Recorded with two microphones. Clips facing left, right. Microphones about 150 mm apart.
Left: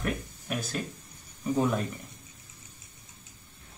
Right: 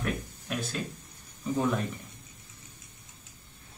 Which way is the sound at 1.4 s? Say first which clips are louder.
Left 2 dB; 10° left (ahead or behind).